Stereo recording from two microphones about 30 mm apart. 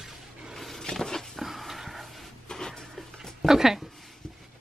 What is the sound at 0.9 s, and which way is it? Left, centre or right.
Dog, centre.